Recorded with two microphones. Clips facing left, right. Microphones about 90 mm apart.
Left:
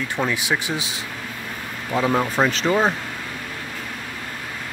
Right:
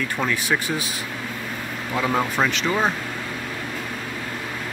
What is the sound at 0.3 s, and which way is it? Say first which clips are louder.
Speech: even; 15° left (ahead or behind).